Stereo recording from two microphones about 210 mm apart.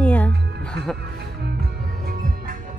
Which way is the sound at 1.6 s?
45° right (ahead or behind).